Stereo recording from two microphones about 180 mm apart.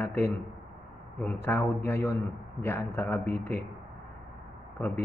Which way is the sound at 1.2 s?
10° left (ahead or behind).